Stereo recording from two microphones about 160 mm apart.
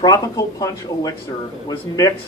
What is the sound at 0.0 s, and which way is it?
A man's voice, 20° left (ahead or behind).